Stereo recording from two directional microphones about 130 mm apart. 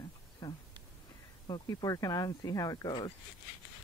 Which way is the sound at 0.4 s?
30° left (ahead or behind).